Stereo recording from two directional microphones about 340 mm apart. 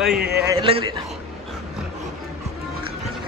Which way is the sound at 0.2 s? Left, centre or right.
Right.